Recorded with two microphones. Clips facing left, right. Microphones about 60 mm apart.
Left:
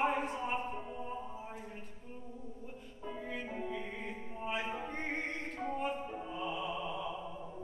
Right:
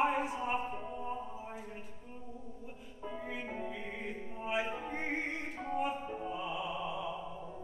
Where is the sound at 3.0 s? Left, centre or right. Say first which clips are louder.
Right 1 dB; centre.